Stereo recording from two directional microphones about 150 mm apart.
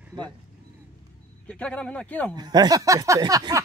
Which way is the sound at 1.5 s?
10° left (ahead or behind).